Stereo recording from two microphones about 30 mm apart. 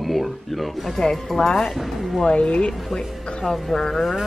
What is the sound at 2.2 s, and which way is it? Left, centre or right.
Speech, left.